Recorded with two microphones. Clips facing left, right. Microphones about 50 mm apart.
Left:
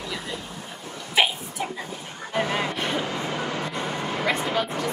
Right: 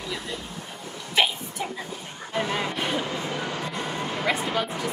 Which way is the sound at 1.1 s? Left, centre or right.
Centre.